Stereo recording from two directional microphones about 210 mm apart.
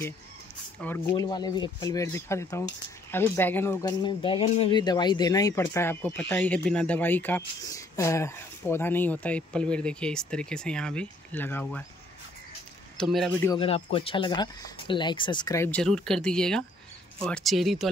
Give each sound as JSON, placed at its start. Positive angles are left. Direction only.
{"t": 0.7, "sound": "speech", "side_deg": 10}
{"t": 1.1, "sound": "speech", "side_deg": 20}
{"t": 4.0, "sound": "speech", "side_deg": 25}
{"t": 13.0, "sound": "speech", "side_deg": 0}
{"t": 13.6, "sound": "speech", "side_deg": 30}